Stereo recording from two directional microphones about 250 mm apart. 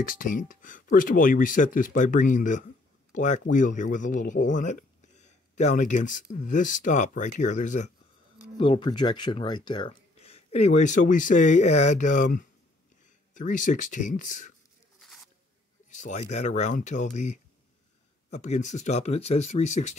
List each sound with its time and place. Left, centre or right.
0.0 s speech: left
8.5 s speech: centre
15.0 s a sound: centre
15.9 s speech: left